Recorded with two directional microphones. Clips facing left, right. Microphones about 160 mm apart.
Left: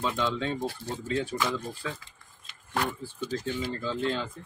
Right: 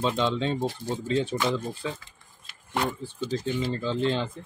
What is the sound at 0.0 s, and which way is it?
Speech, 25° right (ahead or behind).